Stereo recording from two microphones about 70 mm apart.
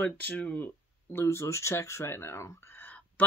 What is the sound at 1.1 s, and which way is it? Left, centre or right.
Speech, left.